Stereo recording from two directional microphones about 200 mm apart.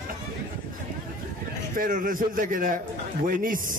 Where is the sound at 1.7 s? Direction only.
45° right (ahead or behind).